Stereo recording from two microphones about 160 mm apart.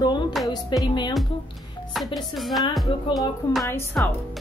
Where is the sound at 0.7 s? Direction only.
30° left (ahead or behind).